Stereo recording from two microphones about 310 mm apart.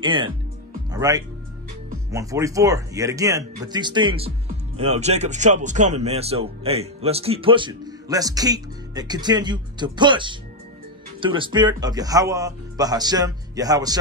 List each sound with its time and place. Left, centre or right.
0.0 s speech: centre